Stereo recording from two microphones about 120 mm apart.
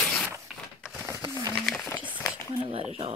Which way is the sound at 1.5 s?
Centre (ahead or behind).